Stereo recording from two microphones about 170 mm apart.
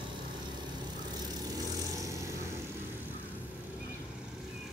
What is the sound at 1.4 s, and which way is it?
Vehicle, 20° right (ahead or behind).